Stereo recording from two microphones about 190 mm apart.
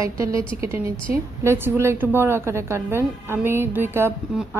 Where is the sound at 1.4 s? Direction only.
10° right (ahead or behind).